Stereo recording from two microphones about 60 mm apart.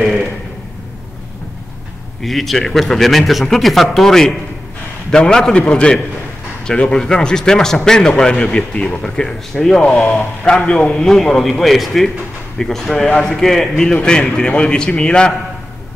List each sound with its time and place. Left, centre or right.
0.0 s a sound: centre
2.2 s a man's voice: centre
10.6 s a man's voice: left